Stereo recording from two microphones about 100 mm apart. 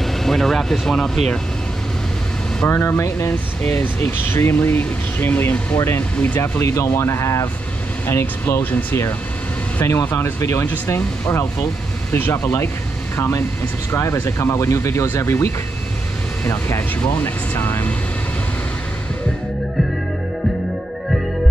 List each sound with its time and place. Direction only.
0.0 s speech: centre (ahead or behind)
2.6 s speech: 20° left (ahead or behind)